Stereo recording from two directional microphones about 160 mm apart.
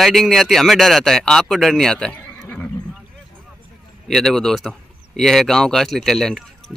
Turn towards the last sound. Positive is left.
turn(degrees=5)  # may be behind; listen again after turning